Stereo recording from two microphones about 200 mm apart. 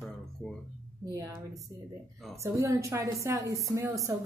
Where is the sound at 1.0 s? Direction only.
15° right (ahead or behind).